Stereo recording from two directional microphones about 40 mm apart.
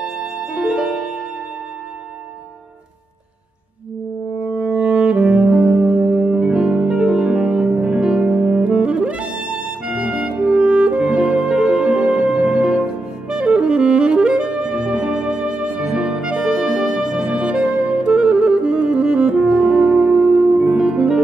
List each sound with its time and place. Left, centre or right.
0.0 s music: right
4.4 s music: right
9.8 s music: right
12.4 s saxophone: right
14.6 s music: centre
17.3 s music: right